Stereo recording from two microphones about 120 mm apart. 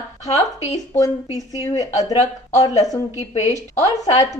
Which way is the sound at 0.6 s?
70° left (ahead or behind).